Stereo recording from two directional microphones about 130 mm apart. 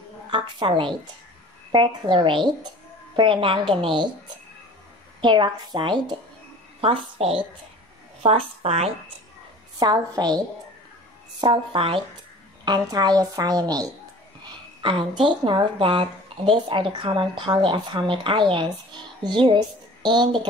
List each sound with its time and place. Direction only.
0.3 s a woman's voice: 40° right (ahead or behind)
5.2 s a woman's voice: 35° right (ahead or behind)
6.8 s a woman's voice: 50° right (ahead or behind)
9.8 s a woman's voice: 30° right (ahead or behind)
11.4 s a woman's voice: 40° right (ahead or behind)
12.6 s a woman's voice: 30° right (ahead or behind)
14.4 s a woman's voice: 40° right (ahead or behind)